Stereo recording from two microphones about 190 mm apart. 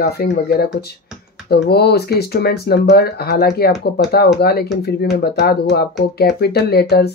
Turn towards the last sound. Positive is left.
turn(degrees=55)  # may be behind; listen again after turning